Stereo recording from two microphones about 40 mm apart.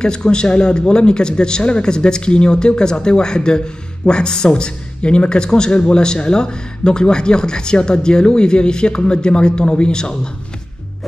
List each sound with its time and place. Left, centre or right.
0.0 s speech: left